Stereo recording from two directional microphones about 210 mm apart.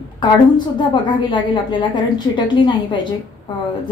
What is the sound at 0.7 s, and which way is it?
A woman's voice, 20° left (ahead or behind).